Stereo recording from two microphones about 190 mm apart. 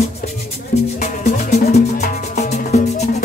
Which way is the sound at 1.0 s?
40° left (ahead or behind).